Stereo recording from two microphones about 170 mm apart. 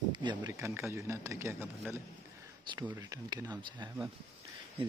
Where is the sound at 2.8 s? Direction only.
20° right (ahead or behind).